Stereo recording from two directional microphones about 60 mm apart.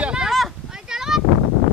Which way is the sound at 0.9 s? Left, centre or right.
Centre.